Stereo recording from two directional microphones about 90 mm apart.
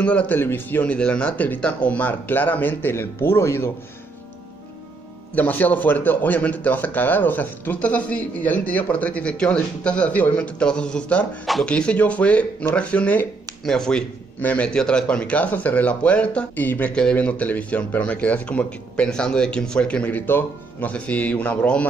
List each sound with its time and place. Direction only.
0.0 s a man's voice: 15° left (ahead or behind); by 3.7 s 30° left (ahead or behind)
5.3 s a man's voice: 20° left (ahead or behind)